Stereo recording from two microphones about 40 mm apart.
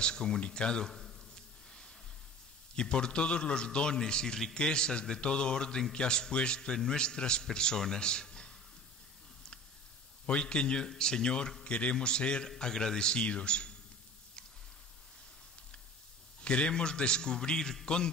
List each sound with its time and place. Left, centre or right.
0.0 s a man's voice: left
2.7 s a man's voice: left
10.2 s a man's voice: left
16.3 s a man's voice: left